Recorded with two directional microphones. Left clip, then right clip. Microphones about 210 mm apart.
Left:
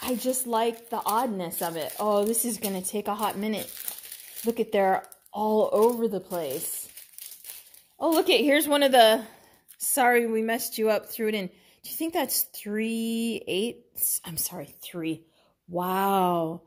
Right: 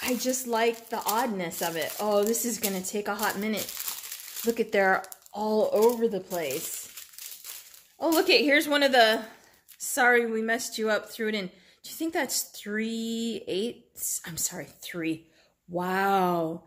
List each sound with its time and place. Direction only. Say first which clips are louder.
0.0 s speech: even; 25° left (ahead or behind)
8.2 s speech: right 1 dB; 30° left (ahead or behind)